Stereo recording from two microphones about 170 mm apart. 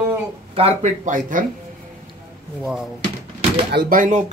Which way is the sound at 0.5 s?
40° right (ahead or behind).